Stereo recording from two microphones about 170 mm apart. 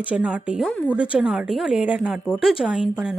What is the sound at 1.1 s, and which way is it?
Speech, 5° right (ahead or behind).